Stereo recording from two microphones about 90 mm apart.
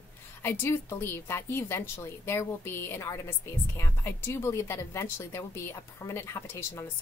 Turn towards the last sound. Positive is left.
turn(degrees=30)  # may be behind; listen again after turning